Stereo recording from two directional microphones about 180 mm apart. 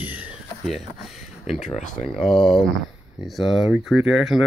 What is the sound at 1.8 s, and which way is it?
Speech, 45° left (ahead or behind).